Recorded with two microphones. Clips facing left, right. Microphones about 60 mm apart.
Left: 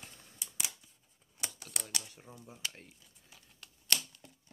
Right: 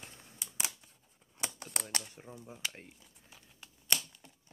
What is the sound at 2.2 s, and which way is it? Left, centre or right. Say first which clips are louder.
Speech: right 2 dB; centre.